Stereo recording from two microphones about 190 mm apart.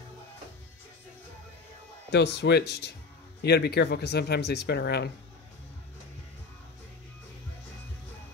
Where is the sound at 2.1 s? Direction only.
65° left (ahead or behind).